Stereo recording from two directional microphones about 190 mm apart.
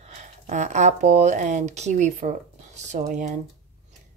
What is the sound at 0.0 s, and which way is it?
Speech, 40° right (ahead or behind).